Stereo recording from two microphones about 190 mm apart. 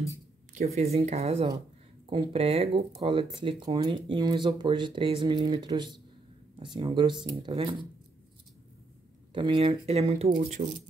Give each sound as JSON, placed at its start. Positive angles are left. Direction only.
{"t": 0.6, "sound": "speech", "side_deg": -35}
{"t": 9.3, "sound": "speech", "side_deg": -25}